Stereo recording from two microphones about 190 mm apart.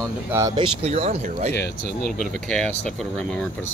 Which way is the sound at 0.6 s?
30° right (ahead or behind).